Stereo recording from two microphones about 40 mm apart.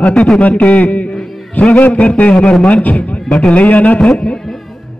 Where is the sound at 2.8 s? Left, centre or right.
Left.